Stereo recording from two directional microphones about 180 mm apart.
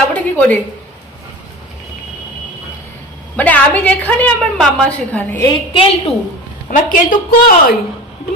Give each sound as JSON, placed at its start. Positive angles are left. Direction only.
{"t": 0.1, "sound": "a sound", "side_deg": 10}
{"t": 3.3, "sound": "a woman's voice", "side_deg": 10}
{"t": 5.5, "sound": "a woman's voice", "side_deg": 30}
{"t": 6.9, "sound": "speech", "side_deg": 50}